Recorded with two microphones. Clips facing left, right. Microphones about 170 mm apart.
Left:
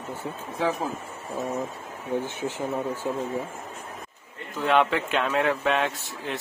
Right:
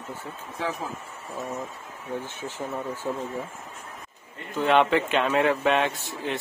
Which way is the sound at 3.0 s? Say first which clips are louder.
Right 1 dB; 20° left (ahead or behind).